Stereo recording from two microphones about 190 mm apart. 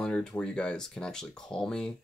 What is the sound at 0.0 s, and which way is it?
Speech, 5° left (ahead or behind).